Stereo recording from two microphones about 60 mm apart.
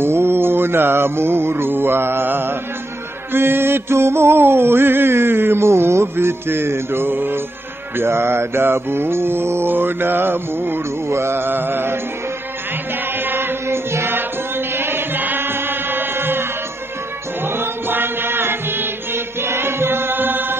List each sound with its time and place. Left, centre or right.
0.0 s music: right
13.2 s music: right
14.7 s chant: right
17.4 s music: right